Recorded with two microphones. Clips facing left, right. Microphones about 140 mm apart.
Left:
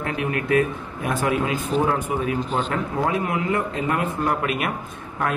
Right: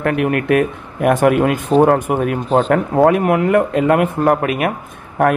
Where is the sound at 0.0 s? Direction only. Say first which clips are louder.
Right 9 dB; 65° right (ahead or behind).